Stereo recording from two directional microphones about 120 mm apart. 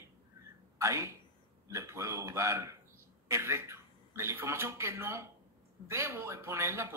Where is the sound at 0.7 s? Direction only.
25° right (ahead or behind).